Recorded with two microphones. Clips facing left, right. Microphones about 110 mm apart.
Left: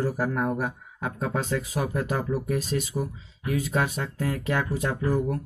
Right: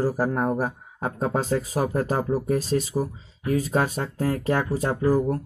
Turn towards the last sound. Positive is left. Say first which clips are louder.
# right 4 dB
turn(degrees=-35)  # may be behind; listen again after turning